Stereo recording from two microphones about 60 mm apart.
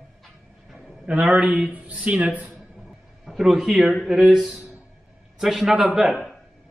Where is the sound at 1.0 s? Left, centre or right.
Centre.